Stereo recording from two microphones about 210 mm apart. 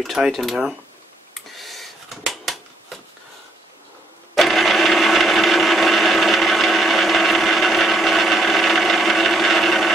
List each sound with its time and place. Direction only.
0.0 s speech: centre (ahead or behind)
1.6 s a sound: centre (ahead or behind)
4.4 s blender: centre (ahead or behind)